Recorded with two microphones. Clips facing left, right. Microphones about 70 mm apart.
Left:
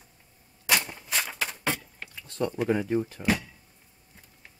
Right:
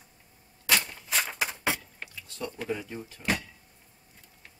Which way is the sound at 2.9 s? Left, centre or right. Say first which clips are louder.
Left 13 dB; left.